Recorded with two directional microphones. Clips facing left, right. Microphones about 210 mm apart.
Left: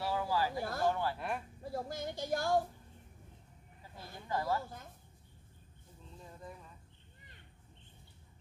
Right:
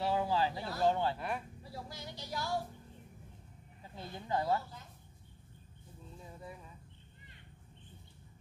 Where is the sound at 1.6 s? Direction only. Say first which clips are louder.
Left 7 dB; 50° left (ahead or behind).